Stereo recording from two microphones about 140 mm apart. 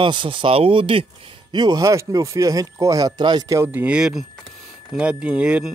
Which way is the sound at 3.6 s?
15° right (ahead or behind).